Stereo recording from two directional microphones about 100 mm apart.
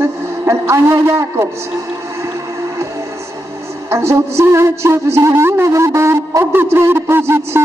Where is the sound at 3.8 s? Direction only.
25° right (ahead or behind).